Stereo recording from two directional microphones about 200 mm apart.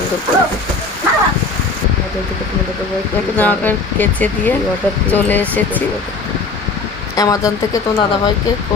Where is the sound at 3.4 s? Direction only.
10° left (ahead or behind).